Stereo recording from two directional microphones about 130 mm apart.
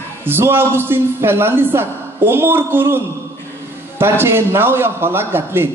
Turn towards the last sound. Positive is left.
turn(degrees=-15)  # may be behind; listen again after turning